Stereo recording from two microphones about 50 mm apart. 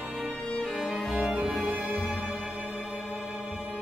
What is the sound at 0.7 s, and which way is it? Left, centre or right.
Music, centre.